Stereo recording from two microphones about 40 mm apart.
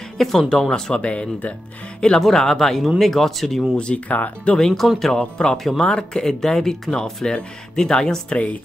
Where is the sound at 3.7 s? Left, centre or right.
Left.